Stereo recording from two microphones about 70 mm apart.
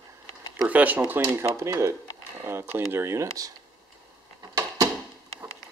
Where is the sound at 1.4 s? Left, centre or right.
Right.